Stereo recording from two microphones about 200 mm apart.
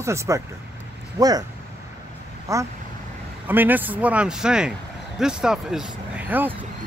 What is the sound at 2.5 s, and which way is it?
Speech, 15° right (ahead or behind).